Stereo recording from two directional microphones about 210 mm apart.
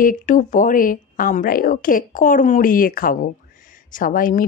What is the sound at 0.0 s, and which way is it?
A woman's voice, 40° left (ahead or behind).